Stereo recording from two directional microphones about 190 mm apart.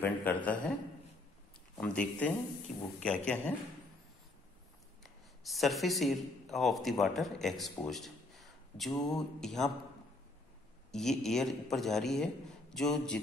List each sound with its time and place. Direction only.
0.0 s a man's voice: 10° left (ahead or behind)
1.8 s speech: 5° left (ahead or behind)
5.0 s a man's voice: centre (ahead or behind)
10.9 s a man's voice: centre (ahead or behind)